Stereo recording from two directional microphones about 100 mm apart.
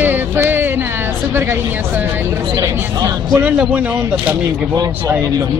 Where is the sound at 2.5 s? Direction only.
35° right (ahead or behind).